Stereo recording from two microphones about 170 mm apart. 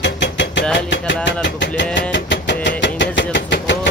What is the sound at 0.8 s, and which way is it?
Vehicle, 90° left.